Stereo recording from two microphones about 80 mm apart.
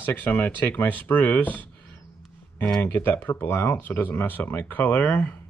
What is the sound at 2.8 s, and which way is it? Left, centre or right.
Speech, left.